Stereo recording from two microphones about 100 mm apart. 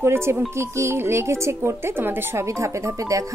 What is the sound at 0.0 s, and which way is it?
A woman's voice, 25° right (ahead or behind).